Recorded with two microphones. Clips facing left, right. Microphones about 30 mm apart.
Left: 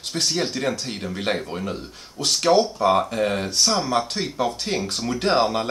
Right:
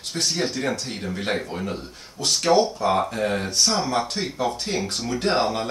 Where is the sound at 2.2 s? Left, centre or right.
Left.